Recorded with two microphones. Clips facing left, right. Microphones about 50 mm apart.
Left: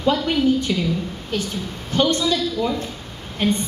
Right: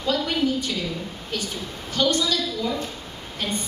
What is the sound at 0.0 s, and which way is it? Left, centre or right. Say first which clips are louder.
Speech: left 5 dB; left.